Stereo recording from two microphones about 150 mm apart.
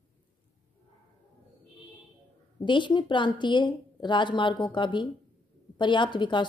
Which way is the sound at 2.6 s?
30° left (ahead or behind).